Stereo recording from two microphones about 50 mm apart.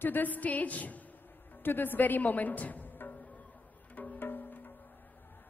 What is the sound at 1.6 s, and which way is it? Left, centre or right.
A woman's voice, left.